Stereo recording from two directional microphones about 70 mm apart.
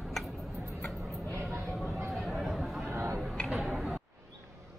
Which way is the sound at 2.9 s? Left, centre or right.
Right.